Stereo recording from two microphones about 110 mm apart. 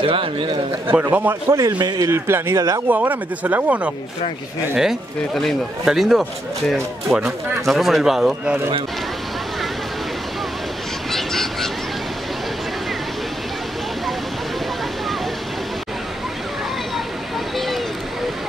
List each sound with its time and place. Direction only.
0.0 s a man's voice: 55° right (ahead or behind)
0.9 s speech: 15° right (ahead or behind)
1.8 s speech: 40° right (ahead or behind)
2.0 s speech: 20° right (ahead or behind)
4.7 s speech: centre (ahead or behind)
11.1 s a sound: 5° left (ahead or behind)